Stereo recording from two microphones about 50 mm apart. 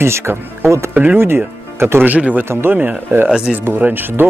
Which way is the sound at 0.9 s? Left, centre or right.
Right.